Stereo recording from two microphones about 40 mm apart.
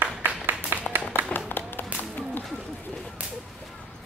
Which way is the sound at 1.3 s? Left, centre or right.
Left.